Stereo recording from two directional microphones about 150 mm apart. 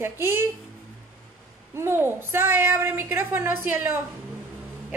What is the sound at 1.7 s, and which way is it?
A woman's voice, 15° right (ahead or behind).